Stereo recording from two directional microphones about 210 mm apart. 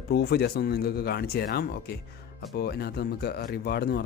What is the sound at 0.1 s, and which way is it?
Speech, 50° left (ahead or behind).